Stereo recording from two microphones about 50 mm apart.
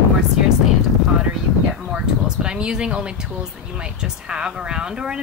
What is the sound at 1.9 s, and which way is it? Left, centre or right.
A woman's voice, centre.